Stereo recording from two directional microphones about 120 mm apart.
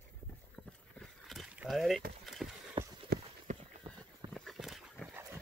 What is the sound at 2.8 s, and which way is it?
Clip-clop, 40° right (ahead or behind).